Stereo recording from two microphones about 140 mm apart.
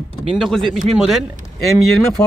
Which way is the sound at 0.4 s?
Centre (ahead or behind).